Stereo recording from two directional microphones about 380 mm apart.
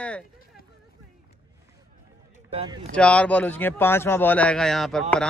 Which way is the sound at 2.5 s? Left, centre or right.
Centre.